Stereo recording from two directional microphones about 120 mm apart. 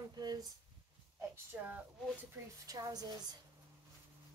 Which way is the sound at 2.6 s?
30° right (ahead or behind).